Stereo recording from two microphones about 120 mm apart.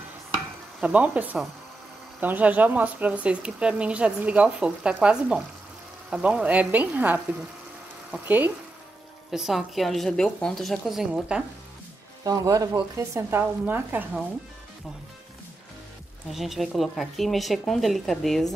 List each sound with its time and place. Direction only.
0.7 s speech: 10° right (ahead or behind)
9.3 s speech: 5° right (ahead or behind)
12.3 s speech: 30° right (ahead or behind)
16.3 s speech: centre (ahead or behind)